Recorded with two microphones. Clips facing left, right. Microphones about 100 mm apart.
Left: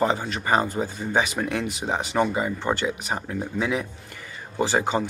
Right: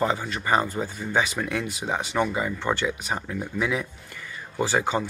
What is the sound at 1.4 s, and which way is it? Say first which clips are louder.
Speech: left 2 dB; 35° left (ahead or behind).